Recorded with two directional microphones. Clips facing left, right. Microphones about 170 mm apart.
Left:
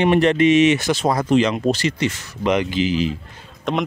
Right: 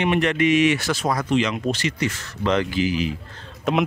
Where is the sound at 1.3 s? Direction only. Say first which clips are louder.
Left 6 dB; 35° left (ahead or behind).